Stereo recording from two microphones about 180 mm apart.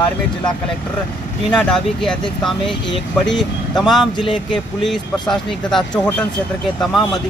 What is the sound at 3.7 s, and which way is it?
Speech, centre (ahead or behind).